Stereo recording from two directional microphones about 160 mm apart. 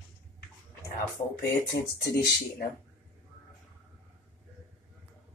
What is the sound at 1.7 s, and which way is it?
Speech, 80° left.